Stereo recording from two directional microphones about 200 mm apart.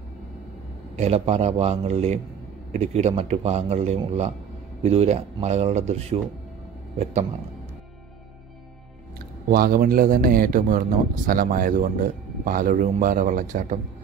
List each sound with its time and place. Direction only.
0.9 s speech: 30° right (ahead or behind)
9.5 s speech: 45° right (ahead or behind)